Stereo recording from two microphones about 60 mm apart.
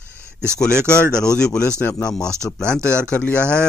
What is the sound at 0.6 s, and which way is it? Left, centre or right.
Speech, centre.